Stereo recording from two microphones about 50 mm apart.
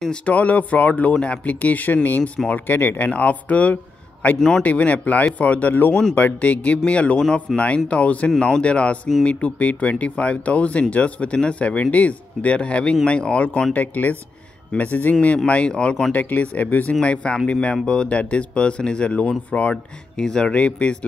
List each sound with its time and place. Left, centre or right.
0.1 s speech: left
3.1 s speech: left
4.4 s a man's voice: centre
4.6 s speech: left
13.7 s speech: left
15.2 s speech: left
16.2 s speech: left